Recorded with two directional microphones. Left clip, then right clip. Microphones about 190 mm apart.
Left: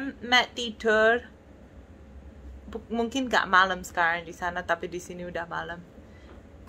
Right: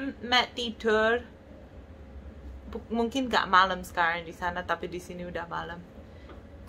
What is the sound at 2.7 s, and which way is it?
A woman's voice, 20° left (ahead or behind).